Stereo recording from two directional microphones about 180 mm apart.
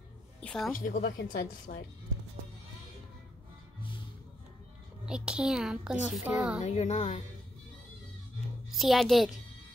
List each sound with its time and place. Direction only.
0.4 s speech: 5° left (ahead or behind)
0.7 s speech: 50° left (ahead or behind)
5.0 s a child's voice: 5° right (ahead or behind)
6.6 s speech: 40° left (ahead or behind)
8.6 s a child's voice: centre (ahead or behind)